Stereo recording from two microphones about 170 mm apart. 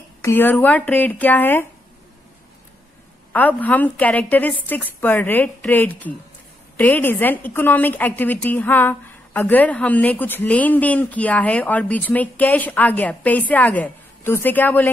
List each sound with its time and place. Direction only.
0.2 s a woman's voice: 15° left (ahead or behind)
3.3 s a woman's voice: 10° left (ahead or behind)